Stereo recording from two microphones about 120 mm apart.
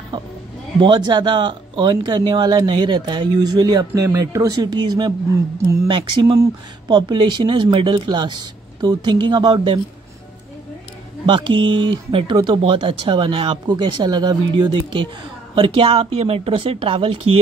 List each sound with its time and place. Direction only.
0.1 s speech: 35° right (ahead or behind)
11.2 s speech: 45° right (ahead or behind)